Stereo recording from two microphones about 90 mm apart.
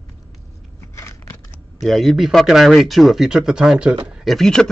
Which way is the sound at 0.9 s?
35° left (ahead or behind).